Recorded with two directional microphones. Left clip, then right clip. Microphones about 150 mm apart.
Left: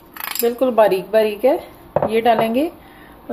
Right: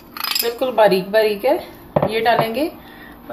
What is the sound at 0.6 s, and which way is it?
Speech, 40° left (ahead or behind).